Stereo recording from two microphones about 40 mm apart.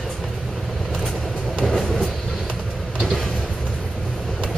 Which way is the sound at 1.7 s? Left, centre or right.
Centre.